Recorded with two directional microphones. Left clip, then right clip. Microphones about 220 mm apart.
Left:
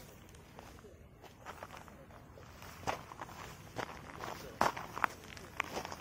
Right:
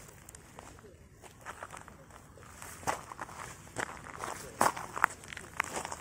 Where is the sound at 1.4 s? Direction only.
25° right (ahead or behind).